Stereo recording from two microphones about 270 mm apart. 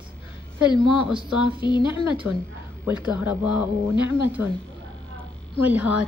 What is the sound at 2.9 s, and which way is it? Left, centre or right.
Speech, centre.